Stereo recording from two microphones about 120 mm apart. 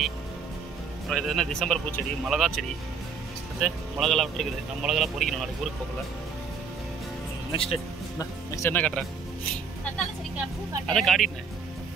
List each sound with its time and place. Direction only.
1.0 s speech: centre (ahead or behind)
3.6 s speech: centre (ahead or behind)
7.5 s speech: 55° left (ahead or behind)
8.2 s speech: 25° left (ahead or behind)
8.7 s speech: 10° left (ahead or behind)
10.9 s speech: 5° left (ahead or behind)